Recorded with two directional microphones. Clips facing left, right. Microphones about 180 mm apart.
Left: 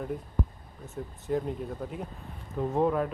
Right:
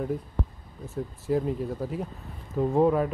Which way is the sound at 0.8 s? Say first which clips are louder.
Right 5 dB; centre (ahead or behind).